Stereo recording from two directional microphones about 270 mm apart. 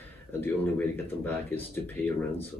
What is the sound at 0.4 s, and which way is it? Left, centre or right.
Speech, centre.